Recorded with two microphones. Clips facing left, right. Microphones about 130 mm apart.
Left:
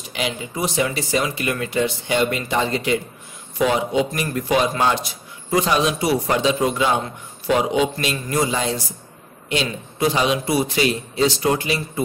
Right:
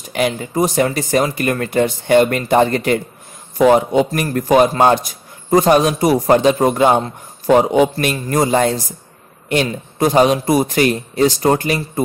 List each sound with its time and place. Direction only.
0.1 s a man's voice: 50° right (ahead or behind)